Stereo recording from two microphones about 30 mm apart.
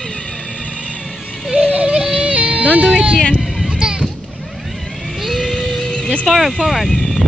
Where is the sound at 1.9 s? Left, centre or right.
Right.